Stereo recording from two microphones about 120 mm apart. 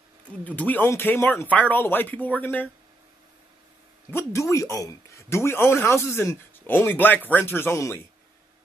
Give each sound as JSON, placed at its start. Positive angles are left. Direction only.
{"t": 0.4, "sound": "speech", "side_deg": 15}
{"t": 4.1, "sound": "speech", "side_deg": 20}